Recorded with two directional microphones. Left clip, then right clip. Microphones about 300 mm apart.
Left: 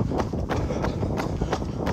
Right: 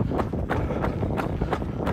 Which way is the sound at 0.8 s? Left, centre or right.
Centre.